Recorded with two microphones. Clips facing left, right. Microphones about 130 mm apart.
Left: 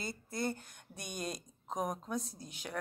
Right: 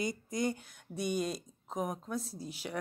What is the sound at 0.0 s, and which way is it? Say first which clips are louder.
Speech: right 4 dB; 15° right (ahead or behind).